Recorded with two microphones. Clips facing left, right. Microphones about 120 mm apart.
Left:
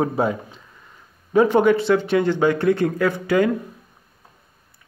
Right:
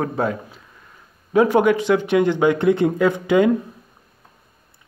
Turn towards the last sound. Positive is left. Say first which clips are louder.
# right 3 dB
turn(degrees=-20)  # may be behind; listen again after turning